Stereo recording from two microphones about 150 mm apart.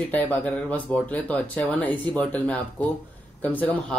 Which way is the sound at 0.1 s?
10° left (ahead or behind).